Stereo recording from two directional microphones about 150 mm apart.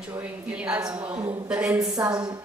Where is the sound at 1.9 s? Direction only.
25° right (ahead or behind).